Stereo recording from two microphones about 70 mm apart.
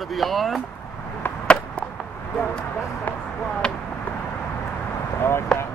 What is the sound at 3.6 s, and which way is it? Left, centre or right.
Speech, centre.